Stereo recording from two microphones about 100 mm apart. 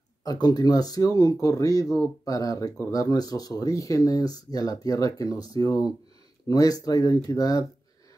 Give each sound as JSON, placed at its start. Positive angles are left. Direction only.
{"t": 0.2, "sound": "speech", "side_deg": 40}